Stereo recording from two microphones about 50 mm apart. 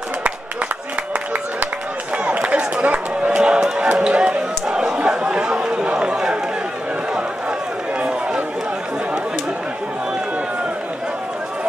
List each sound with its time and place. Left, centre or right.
2.3 s run: right
4.0 s a sound: right
4.9 s chatter: right